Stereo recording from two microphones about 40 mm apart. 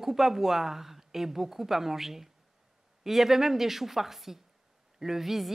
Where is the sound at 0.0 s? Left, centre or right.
Centre.